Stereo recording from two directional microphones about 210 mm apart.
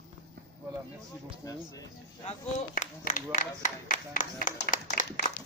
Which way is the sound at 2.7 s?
40° left (ahead or behind).